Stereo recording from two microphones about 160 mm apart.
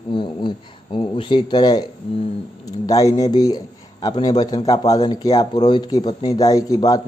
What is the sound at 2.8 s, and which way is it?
A man's voice, 20° left (ahead or behind).